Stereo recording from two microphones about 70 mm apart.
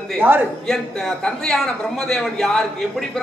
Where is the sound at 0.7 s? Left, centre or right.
Centre.